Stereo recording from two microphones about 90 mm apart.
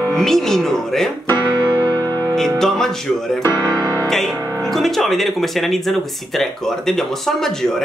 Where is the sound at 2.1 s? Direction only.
40° right (ahead or behind).